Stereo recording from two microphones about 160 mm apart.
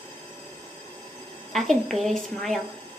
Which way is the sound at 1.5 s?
Centre (ahead or behind).